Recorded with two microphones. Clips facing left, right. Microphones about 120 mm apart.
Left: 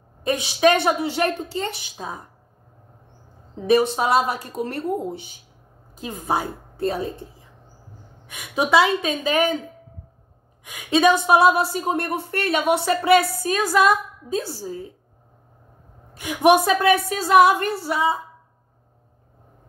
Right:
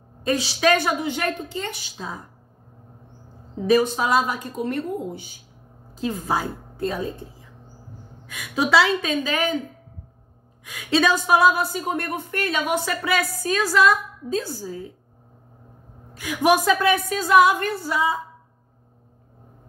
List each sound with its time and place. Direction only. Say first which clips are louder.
0.2 s a woman's voice: left 3 dB; 20° left (ahead or behind)
3.7 s speech: left 1 dB; 30° left (ahead or behind)
5.9 s a woman's voice: even; 15° left (ahead or behind)
10.6 s a woman's voice: left 3 dB; 15° left (ahead or behind)
14.4 s a woman's voice: left 1 dB; 30° left (ahead or behind)
16.2 s a woman's voice: left 3 dB; 25° left (ahead or behind)